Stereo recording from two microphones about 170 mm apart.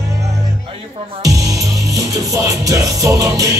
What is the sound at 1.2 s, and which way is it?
Music, 20° right (ahead or behind).